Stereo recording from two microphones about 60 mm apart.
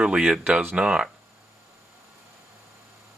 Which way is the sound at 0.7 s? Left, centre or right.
Centre.